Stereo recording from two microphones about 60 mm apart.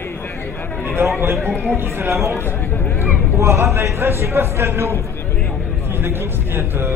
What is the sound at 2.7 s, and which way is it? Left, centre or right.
Speech, left.